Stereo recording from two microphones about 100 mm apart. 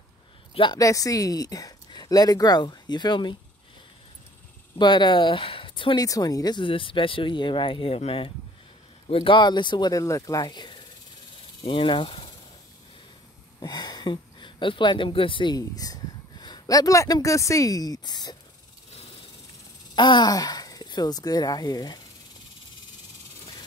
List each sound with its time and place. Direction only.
0.7 s speech: 35° left (ahead or behind); by 3.3 s 50° left (ahead or behind)
4.7 s speech: 50° left (ahead or behind)
5.9 s speech: 40° left (ahead or behind)
6.6 s speech: 60° left (ahead or behind)
9.1 s speech: 60° left (ahead or behind)
10.0 s speech: 35° left (ahead or behind)
11.6 s speech: 65° left (ahead or behind)
13.6 s speech: 45° left (ahead or behind)
15.5 s speech: 40° left (ahead or behind)
20.0 s speech: 50° left (ahead or behind)